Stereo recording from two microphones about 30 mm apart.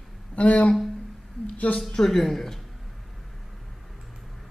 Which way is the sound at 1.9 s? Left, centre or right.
Centre.